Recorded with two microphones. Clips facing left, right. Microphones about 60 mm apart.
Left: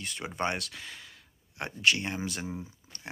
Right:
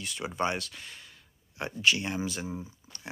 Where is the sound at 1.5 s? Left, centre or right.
Left.